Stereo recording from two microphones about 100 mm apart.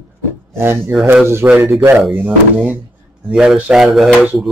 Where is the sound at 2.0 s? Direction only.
Centre (ahead or behind).